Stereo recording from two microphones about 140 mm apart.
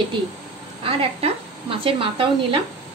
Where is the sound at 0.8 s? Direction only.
40° right (ahead or behind).